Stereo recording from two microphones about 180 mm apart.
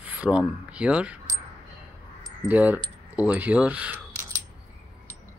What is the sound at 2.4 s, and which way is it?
Speech, 10° right (ahead or behind).